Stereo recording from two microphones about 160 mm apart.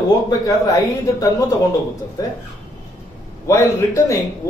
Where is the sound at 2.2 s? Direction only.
20° left (ahead or behind).